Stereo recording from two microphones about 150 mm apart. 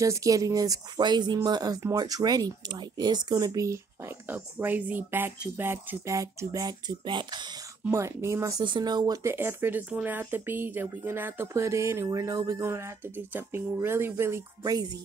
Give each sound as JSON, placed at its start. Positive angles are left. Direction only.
{"t": 0.0, "sound": "speech", "side_deg": -20}
{"t": 7.8, "sound": "speech", "side_deg": -20}
{"t": 8.6, "sound": "speech", "side_deg": -30}